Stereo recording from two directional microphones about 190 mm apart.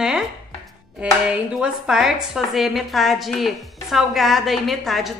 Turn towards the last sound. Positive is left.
turn(degrees=0)  # may be behind; listen again after turning